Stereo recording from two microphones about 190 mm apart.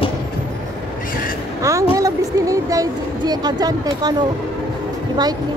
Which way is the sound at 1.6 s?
15° right (ahead or behind).